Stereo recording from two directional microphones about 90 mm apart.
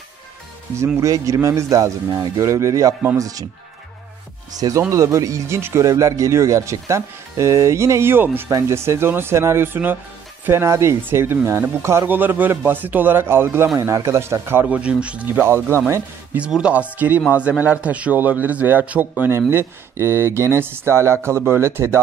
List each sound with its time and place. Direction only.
0.9 s speech: 35° right (ahead or behind)
4.6 s speech: 45° right (ahead or behind); by 8.5 s 25° right (ahead or behind)
8.5 s a man's voice: 35° right (ahead or behind)
14.7 s speech: 15° right (ahead or behind)
15.4 s a man's voice: 30° right (ahead or behind)
16.3 s a man's voice: 10° right (ahead or behind); by 22.0 s 30° right (ahead or behind)